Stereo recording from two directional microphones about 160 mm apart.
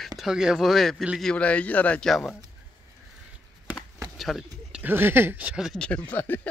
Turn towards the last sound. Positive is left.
turn(degrees=10)  # may be behind; listen again after turning